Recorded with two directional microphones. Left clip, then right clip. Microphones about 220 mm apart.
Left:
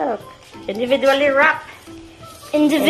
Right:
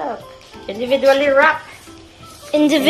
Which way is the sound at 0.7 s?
15° left (ahead or behind).